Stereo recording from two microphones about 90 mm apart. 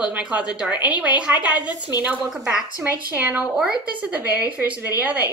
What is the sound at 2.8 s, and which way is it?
Speech, 20° right (ahead or behind).